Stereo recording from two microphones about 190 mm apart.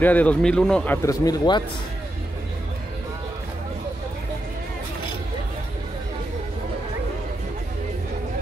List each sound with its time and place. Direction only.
0.0 s speech: 10° left (ahead or behind)
1.0 s speech: 20° left (ahead or behind)